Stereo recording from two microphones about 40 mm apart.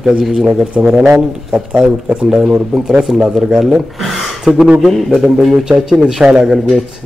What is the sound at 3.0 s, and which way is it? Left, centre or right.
Speech, centre.